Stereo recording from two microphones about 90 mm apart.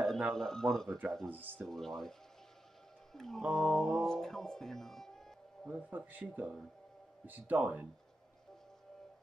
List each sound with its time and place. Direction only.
0.2 s speech: 5° left (ahead or behind)
3.1 s music: 5° left (ahead or behind)
3.5 s speech: 5° left (ahead or behind)
5.7 s speech: 20° right (ahead or behind)